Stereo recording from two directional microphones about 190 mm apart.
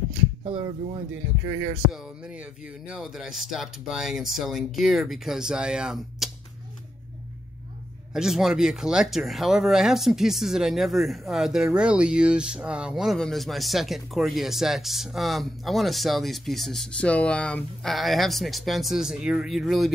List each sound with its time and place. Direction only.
0.4 s speech: 25° right (ahead or behind)
1.9 s speech: 5° right (ahead or behind)
8.1 s speech: centre (ahead or behind)